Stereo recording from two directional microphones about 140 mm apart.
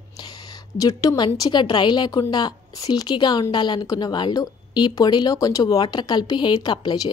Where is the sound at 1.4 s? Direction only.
35° left (ahead or behind).